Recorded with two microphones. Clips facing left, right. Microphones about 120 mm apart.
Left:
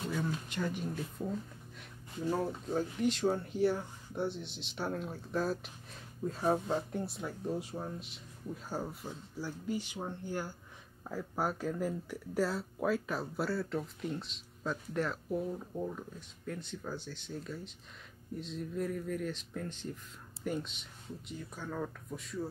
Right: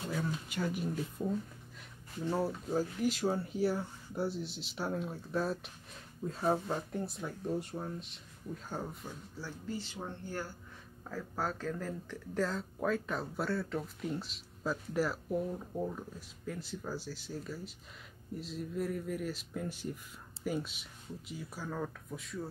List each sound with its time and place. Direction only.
0.1 s speech: 5° right (ahead or behind)
2.3 s speech: 5° right (ahead or behind)
9.0 s speech: 15° left (ahead or behind)